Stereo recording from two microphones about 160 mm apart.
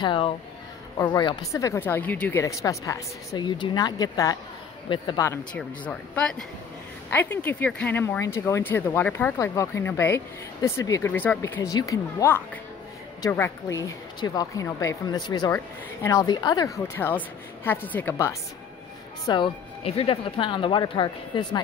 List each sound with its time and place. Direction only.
0.0 s a man's voice: 30° left (ahead or behind)
5.2 s speech: 15° left (ahead or behind)
5.6 s speech: 5° left (ahead or behind)
19.2 s speech: 30° left (ahead or behind)